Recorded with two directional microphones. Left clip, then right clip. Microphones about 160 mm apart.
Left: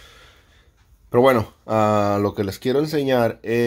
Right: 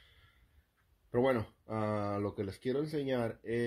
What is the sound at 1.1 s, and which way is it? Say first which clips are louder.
Speech: left 15 dB; 30° left (ahead or behind).